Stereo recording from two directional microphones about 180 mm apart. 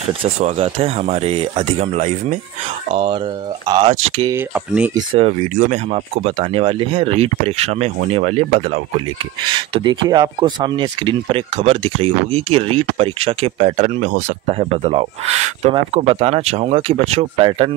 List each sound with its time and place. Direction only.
0.0 s speech: 35° right (ahead or behind)
4.3 s speech: 10° right (ahead or behind)
4.9 s speech: 30° right (ahead or behind)